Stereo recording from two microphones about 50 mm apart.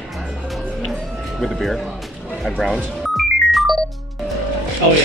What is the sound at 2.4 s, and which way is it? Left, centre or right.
Speech, centre.